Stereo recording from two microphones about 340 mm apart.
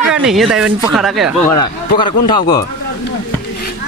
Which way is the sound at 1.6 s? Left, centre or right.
Centre.